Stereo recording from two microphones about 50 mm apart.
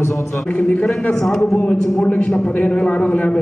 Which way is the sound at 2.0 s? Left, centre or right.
Left.